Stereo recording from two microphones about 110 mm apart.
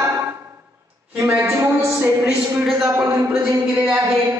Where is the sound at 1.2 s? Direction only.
25° right (ahead or behind).